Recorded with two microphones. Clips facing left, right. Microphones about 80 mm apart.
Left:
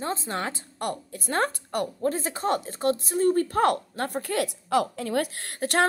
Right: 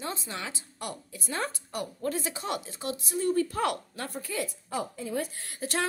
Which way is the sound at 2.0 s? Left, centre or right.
Left.